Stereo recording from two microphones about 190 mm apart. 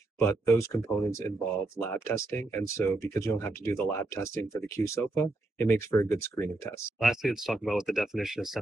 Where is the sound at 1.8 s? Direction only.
15° left (ahead or behind).